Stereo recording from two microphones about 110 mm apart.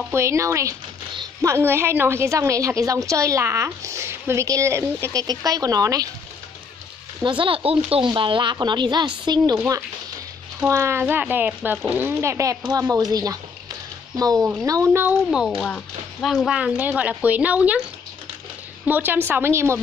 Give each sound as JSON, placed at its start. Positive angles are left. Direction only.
{"t": 0.1, "sound": "a woman's voice", "side_deg": -25}
{"t": 5.2, "sound": "a woman's voice", "side_deg": -35}
{"t": 7.2, "sound": "a woman's voice", "side_deg": -50}
{"t": 10.7, "sound": "a woman's voice", "side_deg": -25}
{"t": 14.9, "sound": "speech", "side_deg": -15}
{"t": 15.6, "sound": "speech", "side_deg": 10}
{"t": 16.3, "sound": "speech", "side_deg": 0}
{"t": 16.5, "sound": "speech", "side_deg": -15}
{"t": 18.9, "sound": "a woman's voice", "side_deg": -15}